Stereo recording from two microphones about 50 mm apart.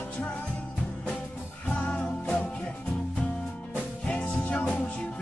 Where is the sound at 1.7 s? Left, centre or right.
Left.